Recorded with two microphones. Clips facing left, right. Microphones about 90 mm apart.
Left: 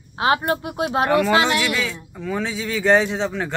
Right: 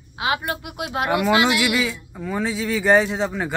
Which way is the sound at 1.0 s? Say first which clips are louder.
Even; 15° right (ahead or behind).